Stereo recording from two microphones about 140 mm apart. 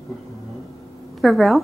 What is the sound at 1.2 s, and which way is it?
Speech, centre (ahead or behind).